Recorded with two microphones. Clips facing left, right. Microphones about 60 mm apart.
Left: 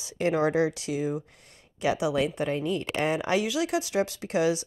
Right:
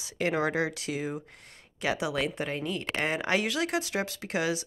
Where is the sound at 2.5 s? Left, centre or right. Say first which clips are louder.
Left 4 dB; right.